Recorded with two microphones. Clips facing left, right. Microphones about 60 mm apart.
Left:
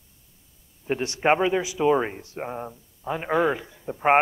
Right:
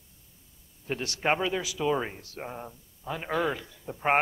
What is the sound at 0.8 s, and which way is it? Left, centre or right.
Speech, left.